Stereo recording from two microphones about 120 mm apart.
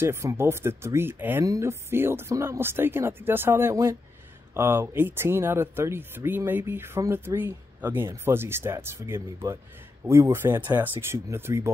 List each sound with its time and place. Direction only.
0.0 s speech: 20° right (ahead or behind)